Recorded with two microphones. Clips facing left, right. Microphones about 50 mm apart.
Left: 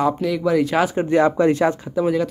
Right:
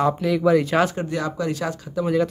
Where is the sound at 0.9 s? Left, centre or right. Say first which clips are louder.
Left 9 dB; left.